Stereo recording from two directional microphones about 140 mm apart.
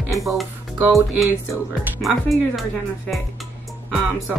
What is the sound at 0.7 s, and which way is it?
Speech, 15° right (ahead or behind).